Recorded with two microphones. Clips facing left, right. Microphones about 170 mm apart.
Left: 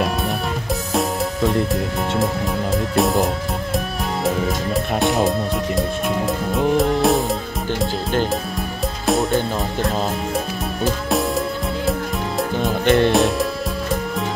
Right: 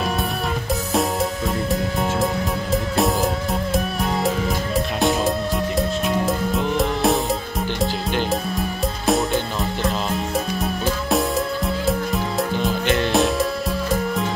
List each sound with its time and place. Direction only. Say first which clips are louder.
2.7 s music: left 2 dB; centre (ahead or behind)
9.0 s music: left 2 dB; centre (ahead or behind)
11.1 s music: even; centre (ahead or behind)
12.8 s music: left 8 dB; 55° left (ahead or behind)
13.1 s music: left 1 dB; centre (ahead or behind)